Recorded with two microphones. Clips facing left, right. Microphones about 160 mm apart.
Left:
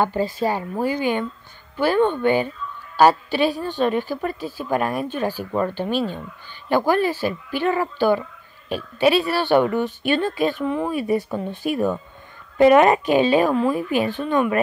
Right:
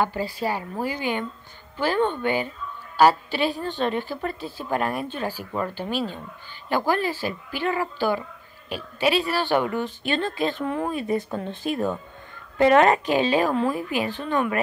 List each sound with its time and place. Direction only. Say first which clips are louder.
0.0 s a woman's voice: left 4 dB; 20° left (ahead or behind)
10.7 s speech: left 3 dB; centre (ahead or behind)
11.0 s a woman's voice: left 4 dB; 10° left (ahead or behind)